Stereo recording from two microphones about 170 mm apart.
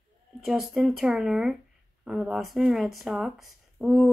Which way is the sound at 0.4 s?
Centre (ahead or behind).